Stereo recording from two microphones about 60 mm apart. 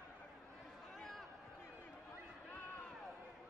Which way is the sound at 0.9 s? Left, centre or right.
Centre.